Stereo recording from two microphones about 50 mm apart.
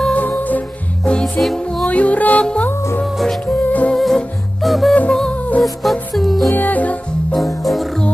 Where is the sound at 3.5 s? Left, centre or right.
Left.